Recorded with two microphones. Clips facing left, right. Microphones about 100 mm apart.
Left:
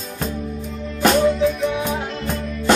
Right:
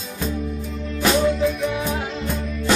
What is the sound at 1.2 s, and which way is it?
Music, centre (ahead or behind).